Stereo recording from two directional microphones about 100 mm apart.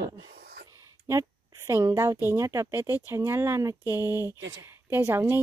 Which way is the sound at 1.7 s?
30° right (ahead or behind).